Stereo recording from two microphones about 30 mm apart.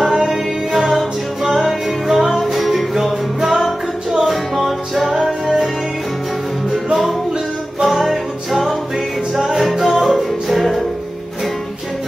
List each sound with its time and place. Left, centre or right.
0.8 s music: centre
7.8 s music: centre
9.3 s music: centre